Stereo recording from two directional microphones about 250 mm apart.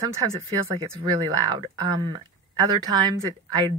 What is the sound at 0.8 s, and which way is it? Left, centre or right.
Speech, centre.